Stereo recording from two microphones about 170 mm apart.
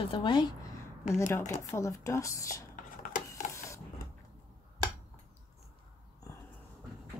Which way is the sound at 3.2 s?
20° left (ahead or behind).